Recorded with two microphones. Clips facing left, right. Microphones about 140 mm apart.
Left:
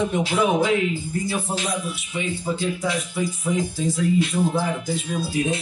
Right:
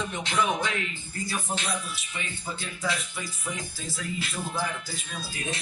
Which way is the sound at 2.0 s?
5° left (ahead or behind).